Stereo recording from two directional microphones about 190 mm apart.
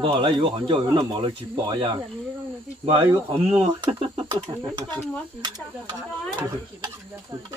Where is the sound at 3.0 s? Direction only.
25° right (ahead or behind).